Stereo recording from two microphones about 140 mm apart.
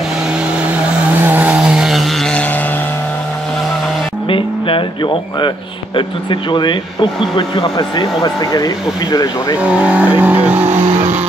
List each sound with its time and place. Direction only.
1.2 s vehicle: 15° right (ahead or behind); by 2.4 s centre (ahead or behind)
4.3 s a sound: 40° left (ahead or behind)
6.5 s speech: 35° left (ahead or behind)
9.6 s speech: 10° right (ahead or behind)